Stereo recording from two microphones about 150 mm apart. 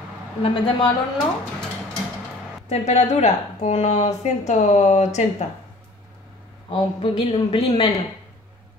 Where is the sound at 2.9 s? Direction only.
50° left (ahead or behind).